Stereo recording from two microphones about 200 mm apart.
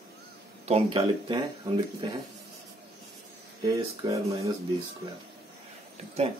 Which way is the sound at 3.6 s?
15° right (ahead or behind).